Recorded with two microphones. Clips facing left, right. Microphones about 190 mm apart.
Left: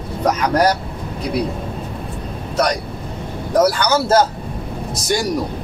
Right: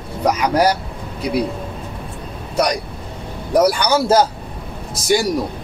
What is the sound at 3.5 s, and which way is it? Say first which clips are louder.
Speech: right 1 dB; 10° right (ahead or behind).